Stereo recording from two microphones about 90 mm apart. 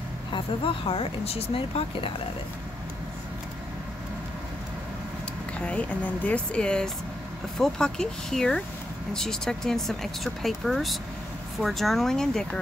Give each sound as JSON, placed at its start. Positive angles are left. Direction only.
{"t": 0.3, "sound": "speech", "side_deg": 85}
{"t": 5.6, "sound": "speech", "side_deg": 15}